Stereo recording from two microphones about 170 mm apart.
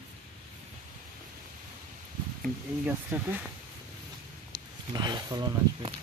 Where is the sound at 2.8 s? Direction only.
10° right (ahead or behind).